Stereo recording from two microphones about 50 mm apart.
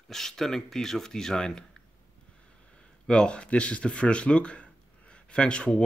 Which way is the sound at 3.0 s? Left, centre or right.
Centre.